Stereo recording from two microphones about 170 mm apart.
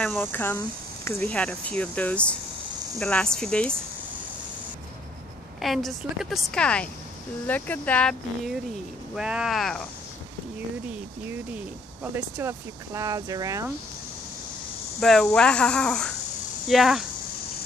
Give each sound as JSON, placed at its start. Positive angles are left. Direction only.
{"t": 0.0, "sound": "a woman's voice", "side_deg": 10}
{"t": 5.6, "sound": "a woman's voice", "side_deg": 0}
{"t": 12.0, "sound": "speech", "side_deg": -15}
{"t": 15.0, "sound": "a woman's voice", "side_deg": 5}